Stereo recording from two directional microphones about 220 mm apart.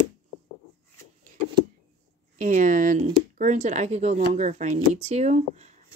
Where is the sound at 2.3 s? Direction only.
35° right (ahead or behind).